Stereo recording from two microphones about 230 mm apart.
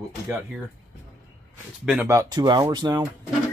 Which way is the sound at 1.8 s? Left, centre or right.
Centre.